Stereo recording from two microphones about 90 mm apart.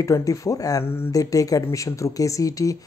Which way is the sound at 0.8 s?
25° left (ahead or behind).